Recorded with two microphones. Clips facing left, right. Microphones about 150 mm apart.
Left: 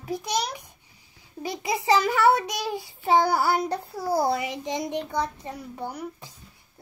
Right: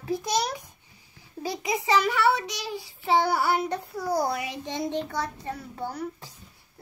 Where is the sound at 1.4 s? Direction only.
20° left (ahead or behind).